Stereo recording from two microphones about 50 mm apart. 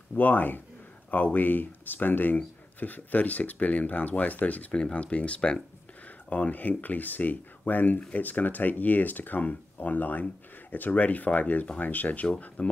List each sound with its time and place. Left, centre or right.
0.1 s speech: left